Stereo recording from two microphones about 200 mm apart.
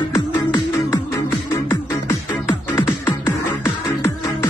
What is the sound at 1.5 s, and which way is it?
Music, 15° left (ahead or behind).